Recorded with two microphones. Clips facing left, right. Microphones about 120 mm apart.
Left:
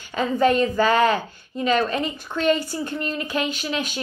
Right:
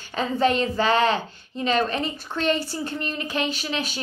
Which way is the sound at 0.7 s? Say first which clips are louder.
Left 2 dB; 25° right (ahead or behind).